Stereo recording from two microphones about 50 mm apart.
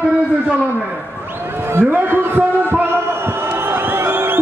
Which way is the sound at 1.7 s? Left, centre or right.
Right.